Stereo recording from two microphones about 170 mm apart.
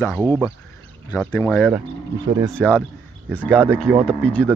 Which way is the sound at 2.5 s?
5° left (ahead or behind).